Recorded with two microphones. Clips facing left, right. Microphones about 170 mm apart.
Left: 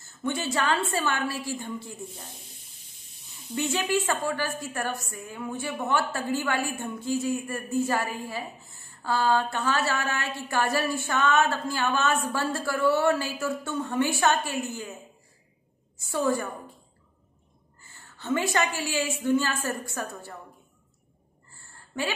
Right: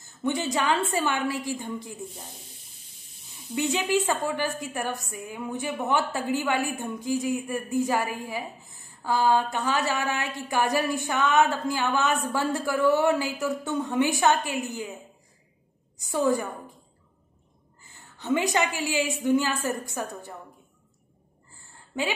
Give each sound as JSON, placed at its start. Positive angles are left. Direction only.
{"t": 0.0, "sound": "a woman's voice", "side_deg": -15}
{"t": 3.5, "sound": "a woman's voice", "side_deg": -15}
{"t": 16.0, "sound": "a woman's voice", "side_deg": -15}
{"t": 18.1, "sound": "a woman's voice", "side_deg": -20}
{"t": 21.5, "sound": "a sound", "side_deg": -15}